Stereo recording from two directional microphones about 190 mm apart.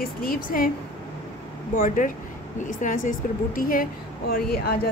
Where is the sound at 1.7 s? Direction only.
45° left (ahead or behind).